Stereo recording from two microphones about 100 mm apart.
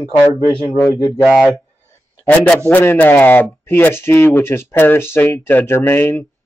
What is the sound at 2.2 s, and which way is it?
Speech, 15° left (ahead or behind).